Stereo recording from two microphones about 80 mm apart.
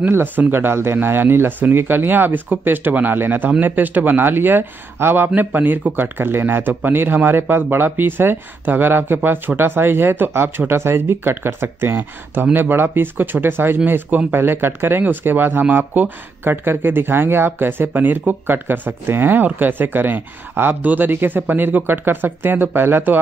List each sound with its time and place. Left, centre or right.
0.1 s speech: right